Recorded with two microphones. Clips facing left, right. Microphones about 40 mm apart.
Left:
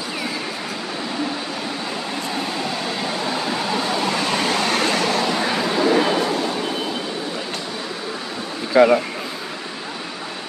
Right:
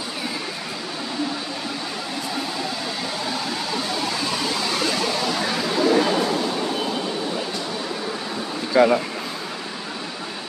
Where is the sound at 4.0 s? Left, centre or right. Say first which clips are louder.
Left 4 dB; left.